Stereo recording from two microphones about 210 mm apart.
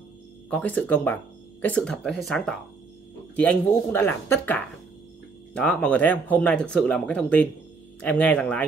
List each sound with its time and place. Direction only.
0.5 s speech: 5° left (ahead or behind)